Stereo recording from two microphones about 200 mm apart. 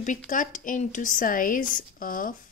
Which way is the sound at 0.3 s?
40° left (ahead or behind).